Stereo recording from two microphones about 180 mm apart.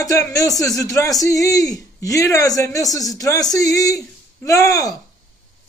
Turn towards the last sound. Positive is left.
turn(degrees=20)  # may be behind; listen again after turning